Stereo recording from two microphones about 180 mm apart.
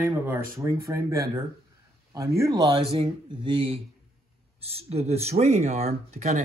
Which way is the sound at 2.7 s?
30° right (ahead or behind).